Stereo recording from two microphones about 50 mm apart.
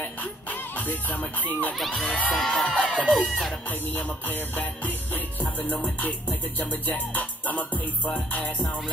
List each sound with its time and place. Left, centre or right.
0.0 s music: left
2.0 s speech: left
3.0 s music: left